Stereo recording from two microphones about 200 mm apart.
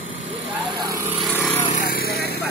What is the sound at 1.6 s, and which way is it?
Vehicle, 45° left (ahead or behind).